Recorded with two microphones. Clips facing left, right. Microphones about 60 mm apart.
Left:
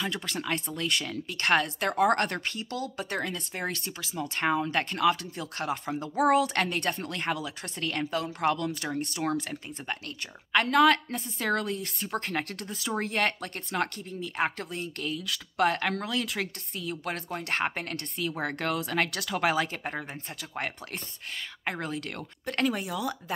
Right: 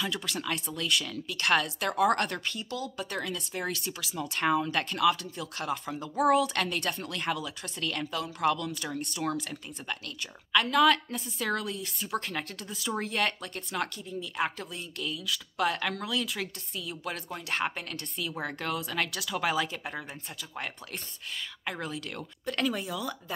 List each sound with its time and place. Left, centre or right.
0.0 s speech: left
4.1 s speech: left
13.0 s speech: left
18.4 s speech: left